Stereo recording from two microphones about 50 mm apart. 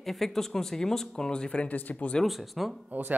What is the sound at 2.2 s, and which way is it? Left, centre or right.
Speech, centre.